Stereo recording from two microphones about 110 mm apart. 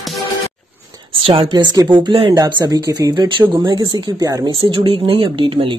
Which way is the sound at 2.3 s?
35° right (ahead or behind).